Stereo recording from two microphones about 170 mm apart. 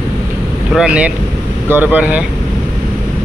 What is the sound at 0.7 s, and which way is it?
Speech, 5° right (ahead or behind).